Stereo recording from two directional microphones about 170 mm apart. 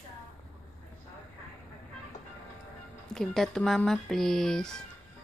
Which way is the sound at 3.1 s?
5° left (ahead or behind).